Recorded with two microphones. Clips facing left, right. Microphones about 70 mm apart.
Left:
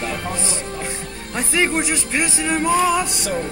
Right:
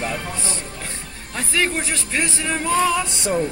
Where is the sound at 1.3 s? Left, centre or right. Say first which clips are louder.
Left 2 dB; centre.